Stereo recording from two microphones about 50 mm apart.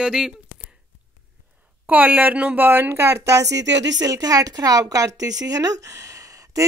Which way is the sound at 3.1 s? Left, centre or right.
Right.